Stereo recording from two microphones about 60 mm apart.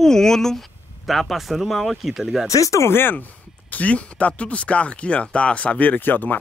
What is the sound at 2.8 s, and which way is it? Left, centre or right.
Speech, left.